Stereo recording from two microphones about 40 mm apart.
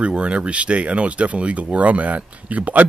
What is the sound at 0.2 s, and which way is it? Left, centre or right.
Speech, right.